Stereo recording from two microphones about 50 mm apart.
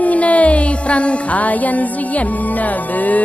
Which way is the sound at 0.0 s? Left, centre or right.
Left.